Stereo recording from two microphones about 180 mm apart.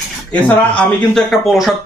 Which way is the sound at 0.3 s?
5° left (ahead or behind).